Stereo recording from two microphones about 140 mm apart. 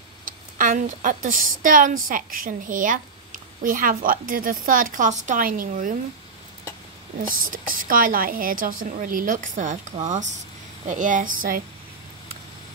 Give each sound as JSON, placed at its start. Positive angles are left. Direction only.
{"t": 0.2, "sound": "a woman's voice", "side_deg": -70}
{"t": 7.3, "sound": "a woman's voice", "side_deg": -80}
{"t": 10.9, "sound": "a woman's voice", "side_deg": -65}